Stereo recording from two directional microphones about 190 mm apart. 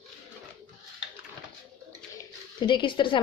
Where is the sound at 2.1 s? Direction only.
25° left (ahead or behind).